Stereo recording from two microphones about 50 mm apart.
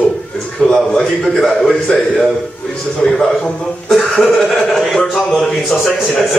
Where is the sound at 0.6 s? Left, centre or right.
Centre.